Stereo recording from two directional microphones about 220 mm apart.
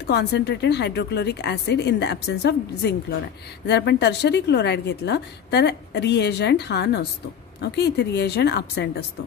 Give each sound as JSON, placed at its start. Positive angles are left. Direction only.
{"t": 0.0, "sound": "a woman's voice", "side_deg": 50}